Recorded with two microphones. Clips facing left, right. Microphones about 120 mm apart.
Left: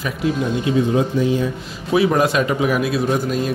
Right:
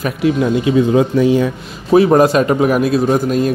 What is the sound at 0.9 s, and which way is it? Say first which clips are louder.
Speech: right 6 dB; 80° right.